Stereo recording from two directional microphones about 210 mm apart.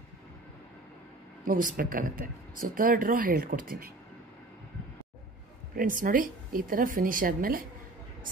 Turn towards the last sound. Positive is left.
turn(degrees=-40)  # may be behind; listen again after turning